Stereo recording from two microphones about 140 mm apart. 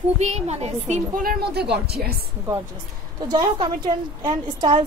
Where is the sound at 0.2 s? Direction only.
50° right (ahead or behind).